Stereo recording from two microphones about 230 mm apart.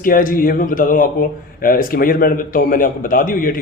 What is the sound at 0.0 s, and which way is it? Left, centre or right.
A man's voice, left.